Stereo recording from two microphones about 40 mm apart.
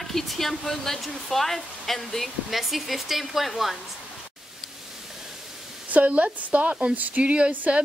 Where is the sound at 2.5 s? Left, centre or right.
Centre.